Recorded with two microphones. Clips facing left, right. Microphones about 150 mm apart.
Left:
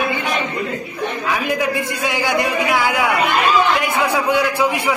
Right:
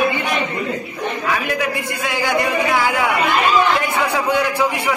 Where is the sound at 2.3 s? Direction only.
15° left (ahead or behind).